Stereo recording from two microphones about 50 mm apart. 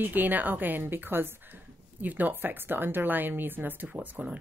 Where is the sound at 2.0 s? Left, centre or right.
Right.